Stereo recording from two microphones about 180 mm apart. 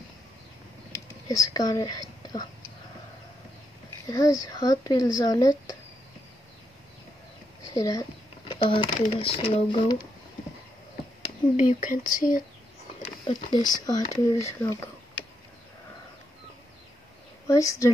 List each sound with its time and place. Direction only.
0.9 s a sound: 20° left (ahead or behind)
4.0 s speech: 20° left (ahead or behind)
7.7 s a sound: 20° left (ahead or behind)
9.2 s speech: 30° left (ahead or behind)
11.5 s speech: 45° left (ahead or behind)
13.3 s speech: 25° left (ahead or behind)
17.5 s speech: 15° left (ahead or behind)